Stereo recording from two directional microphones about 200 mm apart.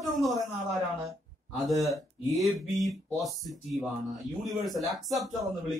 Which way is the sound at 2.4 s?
Centre (ahead or behind).